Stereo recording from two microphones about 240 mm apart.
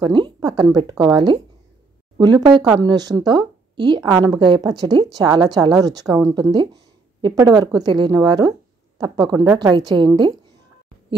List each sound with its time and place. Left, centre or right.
0.0 s a woman's voice: centre